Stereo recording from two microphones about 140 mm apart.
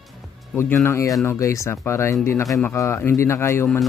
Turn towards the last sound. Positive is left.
turn(degrees=15)  # may be behind; listen again after turning